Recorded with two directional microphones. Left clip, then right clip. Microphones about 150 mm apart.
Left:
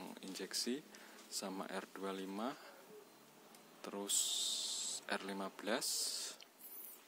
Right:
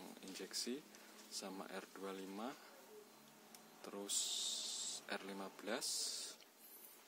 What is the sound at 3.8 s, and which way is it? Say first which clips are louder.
Speech: left 4 dB; 20° left (ahead or behind).